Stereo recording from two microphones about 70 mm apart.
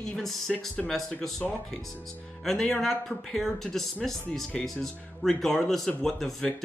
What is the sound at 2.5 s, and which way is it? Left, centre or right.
Speech, centre.